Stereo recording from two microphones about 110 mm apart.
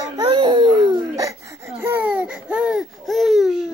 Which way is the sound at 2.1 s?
10° right (ahead or behind).